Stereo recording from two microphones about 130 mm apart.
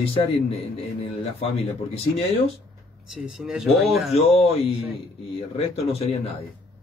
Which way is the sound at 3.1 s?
5° right (ahead or behind).